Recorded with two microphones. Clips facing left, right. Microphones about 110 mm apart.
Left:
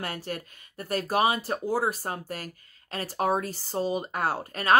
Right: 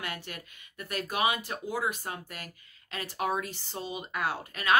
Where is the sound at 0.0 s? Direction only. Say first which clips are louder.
Left 5 dB; 40° left (ahead or behind).